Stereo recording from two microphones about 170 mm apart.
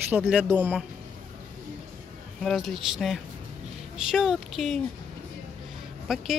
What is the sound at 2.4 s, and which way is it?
Speech, centre (ahead or behind).